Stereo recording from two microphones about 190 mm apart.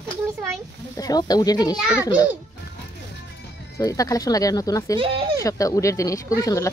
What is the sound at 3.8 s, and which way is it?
Speech, 20° left (ahead or behind).